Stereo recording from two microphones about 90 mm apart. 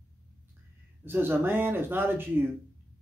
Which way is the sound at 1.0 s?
25° right (ahead or behind).